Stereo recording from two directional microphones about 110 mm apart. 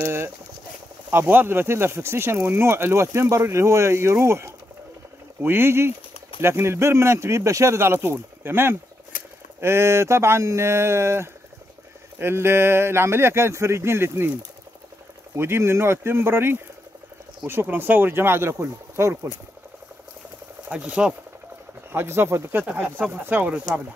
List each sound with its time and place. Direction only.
0.0 s speech: 20° right (ahead or behind)
15.3 s speech: 20° right (ahead or behind)
20.6 s speech: 10° right (ahead or behind)
21.9 s speech: 20° right (ahead or behind)